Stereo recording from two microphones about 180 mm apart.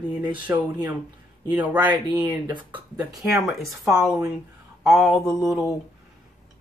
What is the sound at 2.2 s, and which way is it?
Speech, 25° right (ahead or behind).